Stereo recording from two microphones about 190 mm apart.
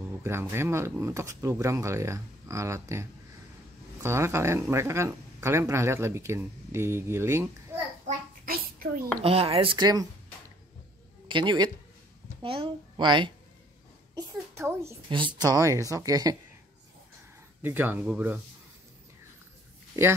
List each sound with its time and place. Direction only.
0.2 s speech: 15° right (ahead or behind)
8.5 s a sound: 50° right (ahead or behind)
9.2 s speech: 30° right (ahead or behind)
11.2 s a woman's voice: 25° right (ahead or behind)
14.1 s a sound: 15° right (ahead or behind)
15.0 s speech: 25° right (ahead or behind)
17.6 s speech: 10° right (ahead or behind)